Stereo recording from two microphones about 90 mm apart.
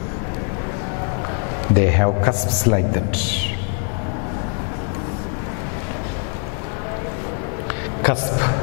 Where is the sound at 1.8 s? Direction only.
15° left (ahead or behind).